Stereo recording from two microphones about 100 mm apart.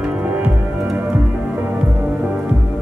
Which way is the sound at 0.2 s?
15° right (ahead or behind).